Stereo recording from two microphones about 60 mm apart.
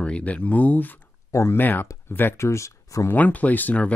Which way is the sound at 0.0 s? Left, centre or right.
Left.